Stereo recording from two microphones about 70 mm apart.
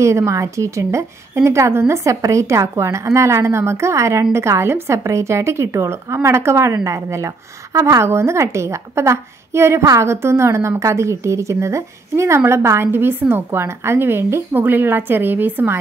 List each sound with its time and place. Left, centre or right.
0.0 s a woman's voice: right
2.0 s a woman's voice: right